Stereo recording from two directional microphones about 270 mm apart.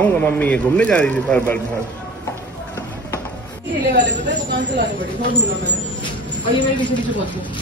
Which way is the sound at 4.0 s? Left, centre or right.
Right.